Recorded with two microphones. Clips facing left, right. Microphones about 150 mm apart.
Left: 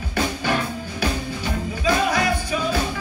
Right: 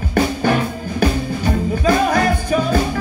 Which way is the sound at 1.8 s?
45° right (ahead or behind).